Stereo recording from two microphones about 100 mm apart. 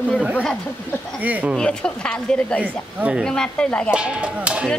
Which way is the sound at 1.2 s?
15° right (ahead or behind).